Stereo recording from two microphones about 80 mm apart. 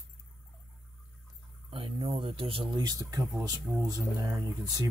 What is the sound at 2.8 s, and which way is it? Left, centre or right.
Speech, right.